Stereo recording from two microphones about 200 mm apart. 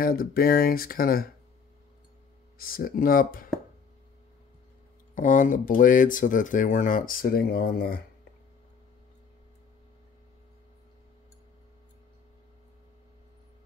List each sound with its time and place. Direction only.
0.0 s speech: 45° left (ahead or behind)
2.6 s speech: 45° left (ahead or behind)
5.1 s speech: 40° left (ahead or behind)